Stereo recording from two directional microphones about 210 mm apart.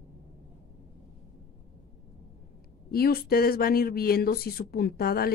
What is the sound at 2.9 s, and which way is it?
Speech, 45° left (ahead or behind).